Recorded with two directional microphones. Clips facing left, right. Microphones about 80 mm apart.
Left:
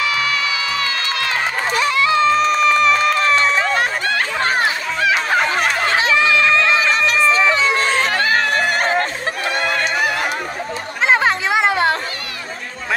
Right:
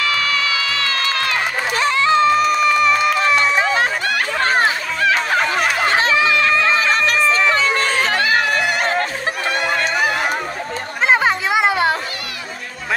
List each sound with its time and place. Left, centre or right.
1.8 s music: right
2.2 s run: centre
5.0 s music: centre
6.3 s music: centre
8.1 s chatter: left
8.5 s a sound: left
11.1 s music: centre